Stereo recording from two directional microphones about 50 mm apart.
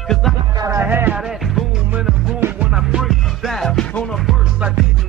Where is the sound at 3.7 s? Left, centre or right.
Centre.